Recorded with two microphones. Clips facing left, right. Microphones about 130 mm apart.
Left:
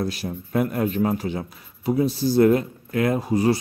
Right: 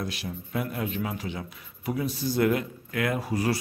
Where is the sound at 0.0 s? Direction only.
40° left (ahead or behind).